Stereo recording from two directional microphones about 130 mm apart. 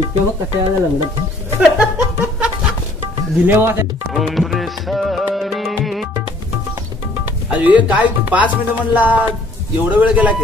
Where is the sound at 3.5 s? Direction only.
15° right (ahead or behind).